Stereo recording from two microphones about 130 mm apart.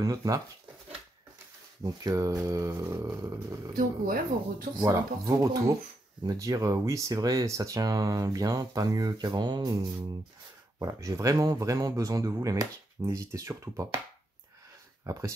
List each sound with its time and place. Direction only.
0.0 s speech: 25° right (ahead or behind)
1.8 s speech: 30° right (ahead or behind)
3.7 s speech: 90° right
4.8 s speech: 25° right (ahead or behind)
15.0 s speech: 25° right (ahead or behind)